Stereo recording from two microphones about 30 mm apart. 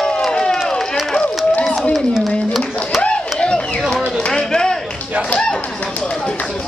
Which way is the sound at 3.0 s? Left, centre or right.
Left.